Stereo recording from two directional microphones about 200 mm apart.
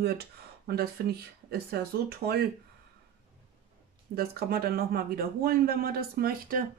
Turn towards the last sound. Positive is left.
turn(degrees=-45)  # may be behind; listen again after turning